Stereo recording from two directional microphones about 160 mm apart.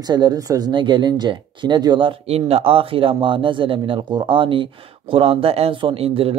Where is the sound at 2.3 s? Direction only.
40° right (ahead or behind).